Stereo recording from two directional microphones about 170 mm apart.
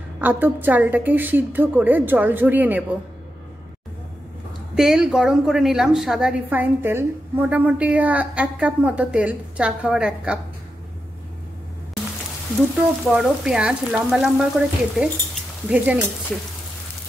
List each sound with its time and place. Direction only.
0.2 s a woman's voice: 10° right (ahead or behind)
4.7 s a woman's voice: 5° right (ahead or behind)
13.1 s speech: 5° right (ahead or behind)